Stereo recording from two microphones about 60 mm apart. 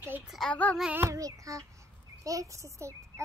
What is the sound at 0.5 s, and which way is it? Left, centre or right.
Child singing, centre.